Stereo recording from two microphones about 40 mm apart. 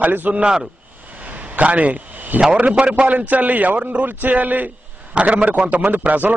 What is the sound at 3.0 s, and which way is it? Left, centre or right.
A man's voice, right.